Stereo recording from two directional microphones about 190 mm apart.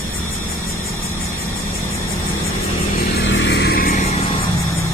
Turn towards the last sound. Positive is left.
turn(degrees=50)  # may be behind; listen again after turning